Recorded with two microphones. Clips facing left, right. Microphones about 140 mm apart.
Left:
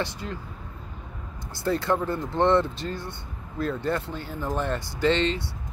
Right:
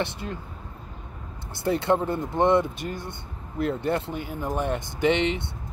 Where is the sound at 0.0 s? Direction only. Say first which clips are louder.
Right 1 dB; 25° right (ahead or behind).